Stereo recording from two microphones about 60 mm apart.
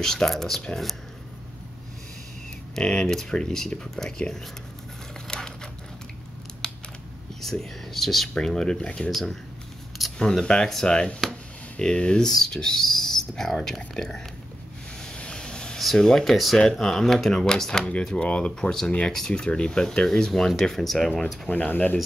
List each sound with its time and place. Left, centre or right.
0.0 s speech: centre
2.7 s speech: centre
5.3 s a sound: centre
6.6 s scissors: centre
7.4 s speech: centre
8.8 s speech: left
9.1 s speech: centre
15.1 s vehicle: centre
15.8 s speech: centre
21.5 s speech: left